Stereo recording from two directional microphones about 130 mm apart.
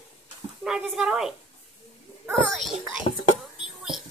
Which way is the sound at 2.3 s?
Centre (ahead or behind).